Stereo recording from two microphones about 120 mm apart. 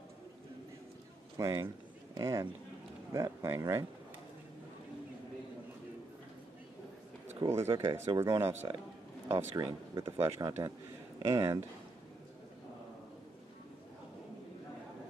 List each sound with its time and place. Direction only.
1.3 s speech: 25° right (ahead or behind)
7.4 s speech: 25° right (ahead or behind)